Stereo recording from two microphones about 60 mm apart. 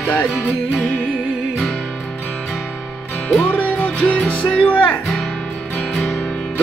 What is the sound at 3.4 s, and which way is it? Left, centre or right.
Music, left.